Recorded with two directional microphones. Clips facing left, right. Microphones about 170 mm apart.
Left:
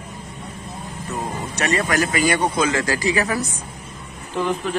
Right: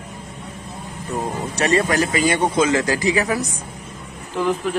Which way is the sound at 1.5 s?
30° right (ahead or behind).